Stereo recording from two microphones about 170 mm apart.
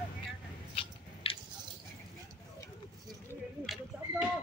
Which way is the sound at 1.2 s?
35° left (ahead or behind).